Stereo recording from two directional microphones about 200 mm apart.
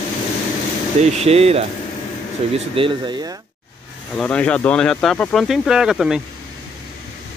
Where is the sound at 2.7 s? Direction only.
25° right (ahead or behind).